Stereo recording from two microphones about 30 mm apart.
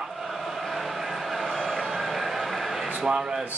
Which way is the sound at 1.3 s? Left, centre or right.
Centre.